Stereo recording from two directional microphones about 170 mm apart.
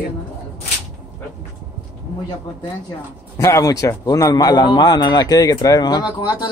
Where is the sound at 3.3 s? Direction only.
20° left (ahead or behind).